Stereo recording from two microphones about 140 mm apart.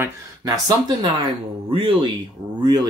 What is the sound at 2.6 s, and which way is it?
Speech, 30° right (ahead or behind).